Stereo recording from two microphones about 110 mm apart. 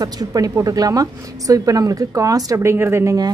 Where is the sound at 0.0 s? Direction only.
35° right (ahead or behind).